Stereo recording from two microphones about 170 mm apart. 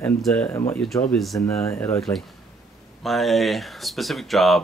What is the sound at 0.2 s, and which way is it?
Speech, 5° left (ahead or behind).